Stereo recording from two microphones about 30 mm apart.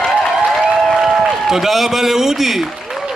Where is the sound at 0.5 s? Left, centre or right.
Centre.